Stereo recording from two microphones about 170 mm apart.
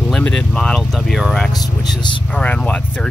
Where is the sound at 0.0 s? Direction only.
5° left (ahead or behind).